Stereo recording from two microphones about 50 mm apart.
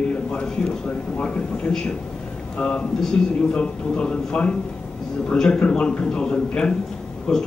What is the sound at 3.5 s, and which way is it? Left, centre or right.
A man's voice, centre.